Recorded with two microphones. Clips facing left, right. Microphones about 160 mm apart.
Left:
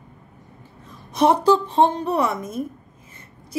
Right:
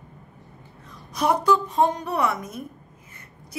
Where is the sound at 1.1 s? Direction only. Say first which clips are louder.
Left 4 dB; 25° left (ahead or behind).